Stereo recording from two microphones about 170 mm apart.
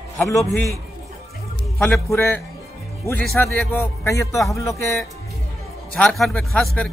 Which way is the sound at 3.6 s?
10° left (ahead or behind).